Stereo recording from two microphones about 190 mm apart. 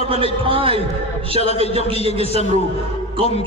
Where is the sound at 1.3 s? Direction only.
35° left (ahead or behind).